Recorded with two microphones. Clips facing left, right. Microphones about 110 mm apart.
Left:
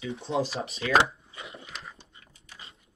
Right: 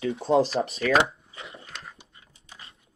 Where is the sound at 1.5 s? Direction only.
Centre (ahead or behind).